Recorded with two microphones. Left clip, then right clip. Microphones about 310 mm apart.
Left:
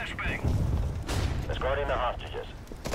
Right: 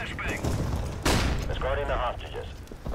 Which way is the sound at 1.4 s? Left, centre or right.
Centre.